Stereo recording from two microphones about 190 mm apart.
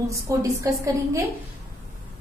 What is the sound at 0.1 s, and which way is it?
A woman's voice, 15° right (ahead or behind).